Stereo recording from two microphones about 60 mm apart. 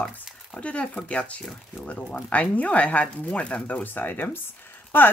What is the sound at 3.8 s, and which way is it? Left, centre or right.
Speech, left.